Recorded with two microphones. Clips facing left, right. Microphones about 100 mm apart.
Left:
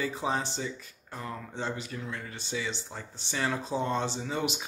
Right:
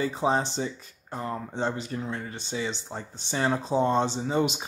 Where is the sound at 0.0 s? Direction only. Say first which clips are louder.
Right 5 dB; 30° right (ahead or behind).